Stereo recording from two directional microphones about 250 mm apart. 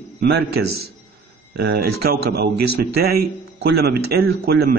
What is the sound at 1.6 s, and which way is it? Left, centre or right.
A man's voice, right.